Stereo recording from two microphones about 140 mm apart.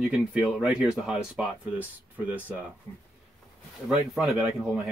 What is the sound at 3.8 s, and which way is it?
Speech, centre (ahead or behind).